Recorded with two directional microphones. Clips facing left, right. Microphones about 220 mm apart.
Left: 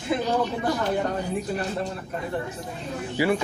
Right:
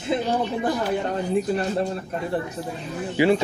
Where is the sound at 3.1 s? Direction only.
25° right (ahead or behind).